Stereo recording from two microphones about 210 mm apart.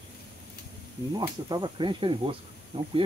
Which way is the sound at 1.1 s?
20° right (ahead or behind).